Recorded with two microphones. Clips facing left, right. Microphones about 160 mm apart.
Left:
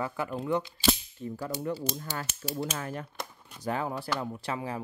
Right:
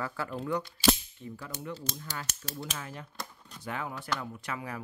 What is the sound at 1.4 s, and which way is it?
Speech, 35° left (ahead or behind).